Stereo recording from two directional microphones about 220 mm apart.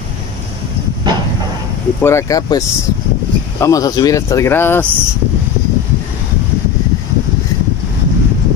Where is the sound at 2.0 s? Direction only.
10° left (ahead or behind).